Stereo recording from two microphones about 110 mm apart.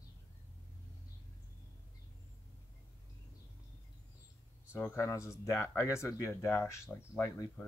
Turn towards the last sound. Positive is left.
turn(degrees=25)  # may be behind; listen again after turning